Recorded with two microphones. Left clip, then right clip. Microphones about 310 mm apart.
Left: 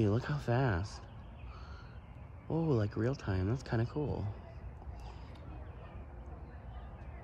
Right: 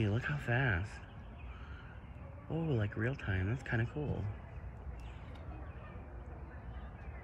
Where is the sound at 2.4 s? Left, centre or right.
Left.